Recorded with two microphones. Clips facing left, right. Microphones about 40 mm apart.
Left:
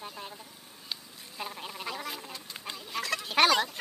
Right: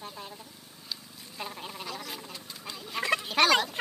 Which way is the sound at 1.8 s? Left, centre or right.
Centre.